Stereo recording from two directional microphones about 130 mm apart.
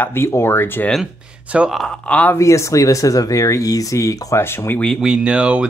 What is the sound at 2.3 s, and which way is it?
Speech, 25° left (ahead or behind).